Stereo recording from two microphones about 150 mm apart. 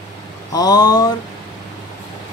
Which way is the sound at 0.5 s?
25° left (ahead or behind).